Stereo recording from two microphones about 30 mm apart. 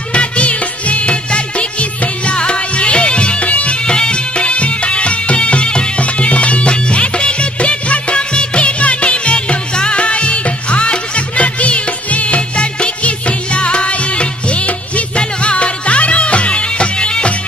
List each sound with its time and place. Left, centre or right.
0.1 s music: left
3.4 s bagpipes: left
3.8 s music: left